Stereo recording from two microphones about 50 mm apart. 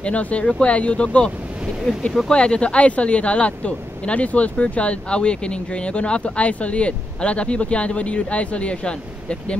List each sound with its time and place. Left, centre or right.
0.0 s speech: left
1.9 s speech: centre